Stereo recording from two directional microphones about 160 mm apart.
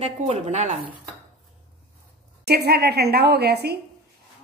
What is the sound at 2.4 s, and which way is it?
A woman's voice, 90° right.